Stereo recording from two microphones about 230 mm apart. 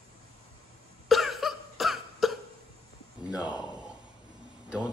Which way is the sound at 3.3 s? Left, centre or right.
Centre.